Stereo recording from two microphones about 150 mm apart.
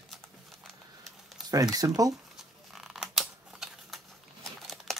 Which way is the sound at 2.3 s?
Centre (ahead or behind).